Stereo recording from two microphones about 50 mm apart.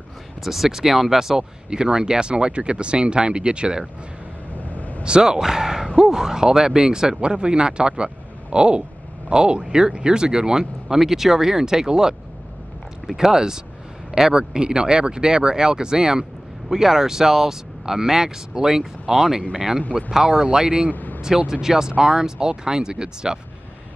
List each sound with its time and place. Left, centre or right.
0.4 s speech: centre
4.6 s vehicle: left
5.0 s speech: centre
20.9 s vehicle: left
21.2 s speech: centre